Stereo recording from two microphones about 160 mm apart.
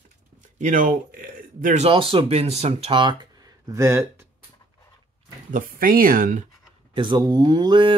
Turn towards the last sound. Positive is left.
turn(degrees=-30)  # may be behind; listen again after turning